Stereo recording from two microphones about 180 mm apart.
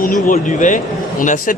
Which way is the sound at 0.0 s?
45° left (ahead or behind).